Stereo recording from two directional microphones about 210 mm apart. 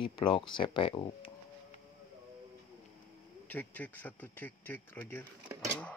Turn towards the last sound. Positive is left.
turn(degrees=5)  # may be behind; listen again after turning